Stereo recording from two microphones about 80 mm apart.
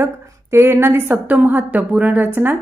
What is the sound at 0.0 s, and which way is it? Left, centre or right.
A woman's voice, right.